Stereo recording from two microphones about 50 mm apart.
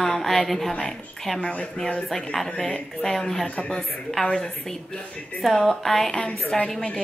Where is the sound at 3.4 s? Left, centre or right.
Left.